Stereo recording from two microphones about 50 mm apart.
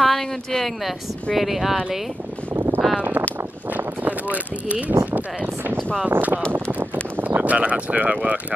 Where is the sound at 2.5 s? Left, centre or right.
Right.